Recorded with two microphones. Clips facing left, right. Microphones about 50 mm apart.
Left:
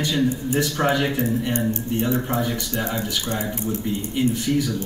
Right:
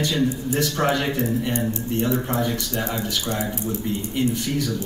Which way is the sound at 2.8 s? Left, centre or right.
Centre.